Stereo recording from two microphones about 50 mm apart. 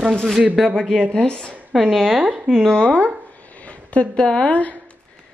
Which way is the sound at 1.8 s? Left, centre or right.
Centre.